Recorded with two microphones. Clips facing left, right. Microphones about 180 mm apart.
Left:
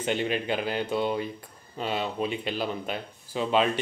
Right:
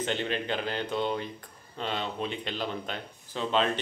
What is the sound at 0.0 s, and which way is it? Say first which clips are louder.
Speech: left 3 dB; 10° left (ahead or behind).